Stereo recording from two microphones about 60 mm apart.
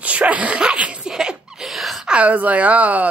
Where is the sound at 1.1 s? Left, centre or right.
Centre.